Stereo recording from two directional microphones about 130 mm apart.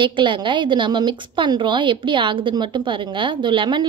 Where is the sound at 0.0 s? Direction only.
40° right (ahead or behind).